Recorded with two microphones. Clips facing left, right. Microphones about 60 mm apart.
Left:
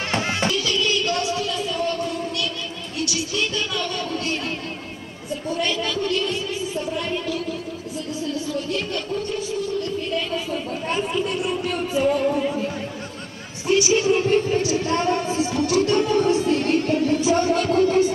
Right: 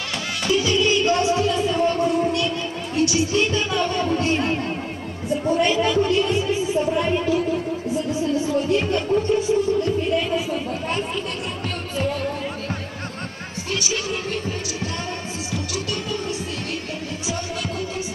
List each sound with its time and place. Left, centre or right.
0.5 s music: centre
3.0 s a woman's voice: right
8.5 s a woman's voice: right
10.5 s speech: centre
13.7 s speech: left